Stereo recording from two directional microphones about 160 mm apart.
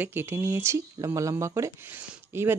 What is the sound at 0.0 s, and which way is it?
Speech, 15° right (ahead or behind).